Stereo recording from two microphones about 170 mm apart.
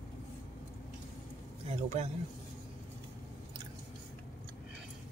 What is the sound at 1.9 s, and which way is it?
Speech, 40° right (ahead or behind).